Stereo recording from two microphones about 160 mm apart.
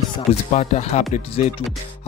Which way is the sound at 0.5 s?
45° left (ahead or behind).